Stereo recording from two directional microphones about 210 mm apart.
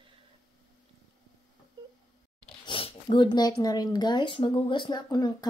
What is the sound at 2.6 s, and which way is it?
Speech, 25° left (ahead or behind).